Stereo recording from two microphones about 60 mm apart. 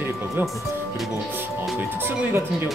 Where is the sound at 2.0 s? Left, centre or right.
Right.